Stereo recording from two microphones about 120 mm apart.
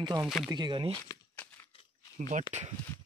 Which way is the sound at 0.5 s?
40° right (ahead or behind).